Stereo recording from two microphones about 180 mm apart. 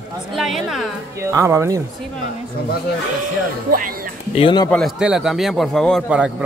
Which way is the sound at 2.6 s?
60° left (ahead or behind).